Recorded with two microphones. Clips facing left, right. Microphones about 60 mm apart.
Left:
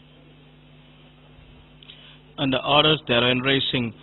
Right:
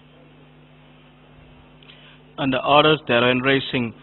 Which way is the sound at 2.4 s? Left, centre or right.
Centre.